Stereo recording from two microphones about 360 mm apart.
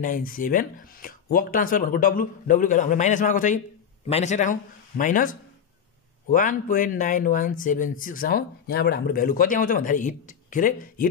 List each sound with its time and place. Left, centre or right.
0.0 s speech: left